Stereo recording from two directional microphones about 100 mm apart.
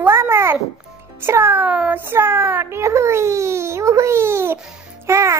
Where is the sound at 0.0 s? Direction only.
25° right (ahead or behind).